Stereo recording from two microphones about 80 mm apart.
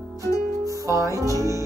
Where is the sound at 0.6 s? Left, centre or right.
Right.